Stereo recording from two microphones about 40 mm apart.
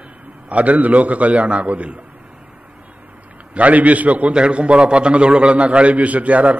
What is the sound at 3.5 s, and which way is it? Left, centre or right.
Speech, right.